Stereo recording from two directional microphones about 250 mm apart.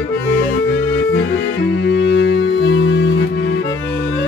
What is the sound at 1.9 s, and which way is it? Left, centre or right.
Music, left.